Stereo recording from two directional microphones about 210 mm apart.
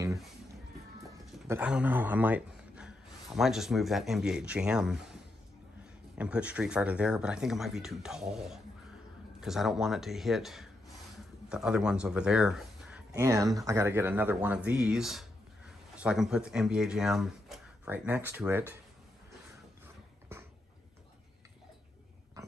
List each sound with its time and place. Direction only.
1.5 s a man's voice: 5° right (ahead or behind)
6.1 s speech: 5° right (ahead or behind)
13.1 s speech: 15° right (ahead or behind)